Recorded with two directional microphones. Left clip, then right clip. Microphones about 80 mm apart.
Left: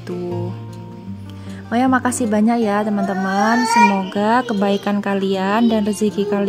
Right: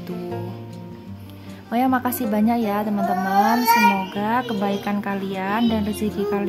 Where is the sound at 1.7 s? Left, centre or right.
Left.